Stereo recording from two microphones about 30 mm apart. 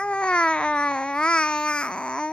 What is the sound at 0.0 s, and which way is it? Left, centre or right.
Babbling, left.